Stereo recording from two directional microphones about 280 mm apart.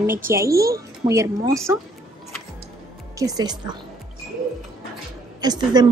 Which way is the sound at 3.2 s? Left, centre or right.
Centre.